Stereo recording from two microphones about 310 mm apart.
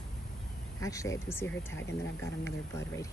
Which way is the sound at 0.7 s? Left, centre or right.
Centre.